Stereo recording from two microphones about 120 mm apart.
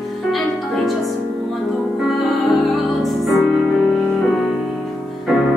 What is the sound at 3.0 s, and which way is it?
Music, centre (ahead or behind).